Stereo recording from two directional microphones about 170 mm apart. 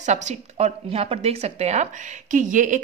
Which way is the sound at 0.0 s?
45° right (ahead or behind).